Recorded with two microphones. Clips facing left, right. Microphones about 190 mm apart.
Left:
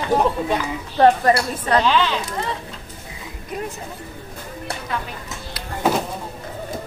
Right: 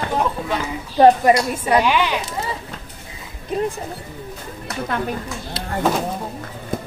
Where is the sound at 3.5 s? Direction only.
30° right (ahead or behind).